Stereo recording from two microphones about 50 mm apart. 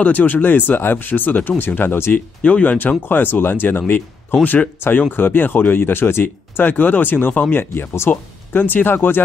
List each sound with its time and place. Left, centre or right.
0.0 s speech: left
2.1 s speech: left
3.0 s speech: left
4.4 s speech: left
5.1 s speech: left
7.7 s speech: left
8.1 s speech: left